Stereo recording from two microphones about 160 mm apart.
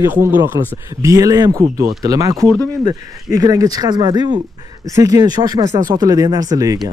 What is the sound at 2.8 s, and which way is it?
Speech, 20° right (ahead or behind).